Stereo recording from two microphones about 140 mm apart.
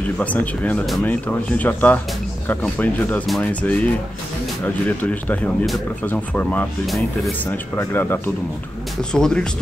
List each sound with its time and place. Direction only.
0.2 s speech: 10° left (ahead or behind)
7.7 s speech: 15° left (ahead or behind)